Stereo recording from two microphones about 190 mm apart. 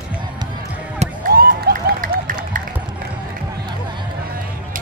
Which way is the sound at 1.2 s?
50° right (ahead or behind).